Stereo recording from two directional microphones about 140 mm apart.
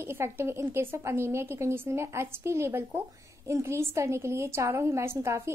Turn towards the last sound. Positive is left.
turn(degrees=-20)  # may be behind; listen again after turning